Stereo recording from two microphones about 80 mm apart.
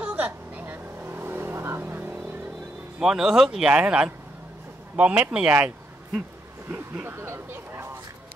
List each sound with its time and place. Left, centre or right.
0.0 s vehicle: centre
3.0 s speech: centre
6.7 s a sound: right